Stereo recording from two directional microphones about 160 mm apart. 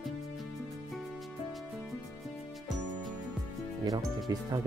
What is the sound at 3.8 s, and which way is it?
Music, 25° right (ahead or behind).